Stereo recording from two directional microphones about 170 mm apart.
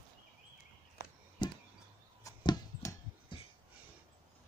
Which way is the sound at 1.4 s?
25° left (ahead or behind).